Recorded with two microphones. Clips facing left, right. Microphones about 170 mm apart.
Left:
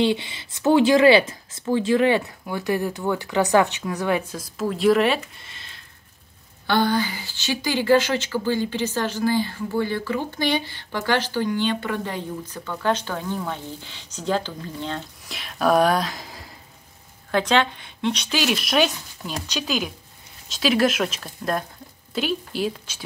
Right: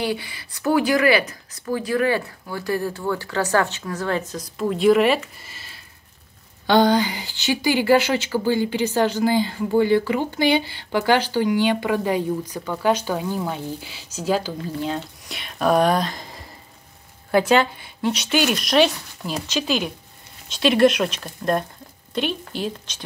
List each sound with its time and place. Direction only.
0.0 s speech: 25° left (ahead or behind)
4.3 s speech: 5° left (ahead or behind)
6.7 s a woman's voice: 15° right (ahead or behind); by 16.4 s centre (ahead or behind)
17.3 s speech: 10° right (ahead or behind)